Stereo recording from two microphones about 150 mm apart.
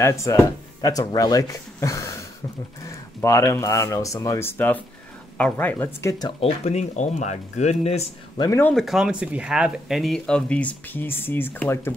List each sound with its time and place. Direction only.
0.0 s speech: 20° left (ahead or behind)
6.2 s speech: 40° left (ahead or behind)
8.4 s speech: 15° left (ahead or behind)
8.7 s speech: centre (ahead or behind); by 11.9 s 15° left (ahead or behind)